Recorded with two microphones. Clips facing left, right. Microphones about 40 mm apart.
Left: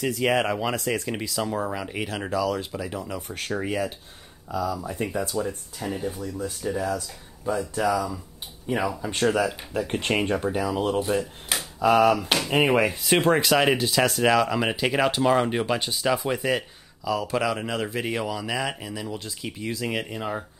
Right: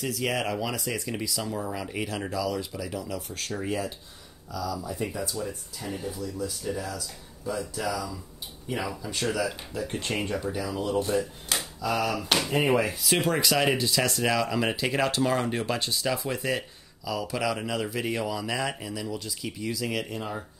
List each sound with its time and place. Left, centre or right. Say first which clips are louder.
0.2 s speech: left 5 dB; left
0.7 s speech: left 5 dB; left
1.0 s speech: left 3 dB; left
1.7 s speech: left 2 dB; centre; by 11.0 s left
11.5 s typewriter: left 2 dB; centre
12.0 s speech: left 6 dB; left
18.2 s speech: left 1 dB; centre
19.0 s speech: left 1 dB; left